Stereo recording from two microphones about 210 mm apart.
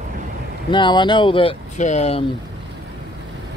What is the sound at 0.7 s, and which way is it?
Speech, 20° left (ahead or behind).